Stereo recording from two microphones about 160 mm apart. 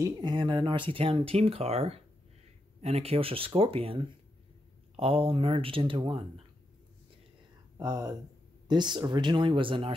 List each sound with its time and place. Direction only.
0.0 s speech: 30° right (ahead or behind)
7.7 s speech: 20° right (ahead or behind)